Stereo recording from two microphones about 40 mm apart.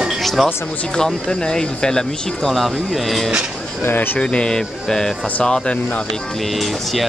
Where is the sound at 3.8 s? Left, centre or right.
Left.